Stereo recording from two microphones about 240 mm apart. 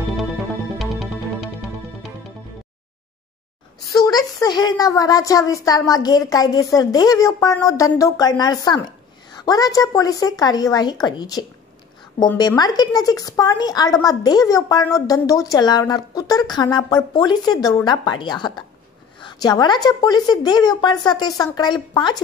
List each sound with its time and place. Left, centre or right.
0.7 s music: centre
3.9 s a woman's voice: centre